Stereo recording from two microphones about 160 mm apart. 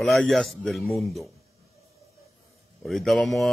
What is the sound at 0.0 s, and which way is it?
Speech, centre (ahead or behind).